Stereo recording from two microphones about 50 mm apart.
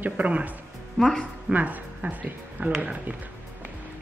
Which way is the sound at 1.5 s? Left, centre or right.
Right.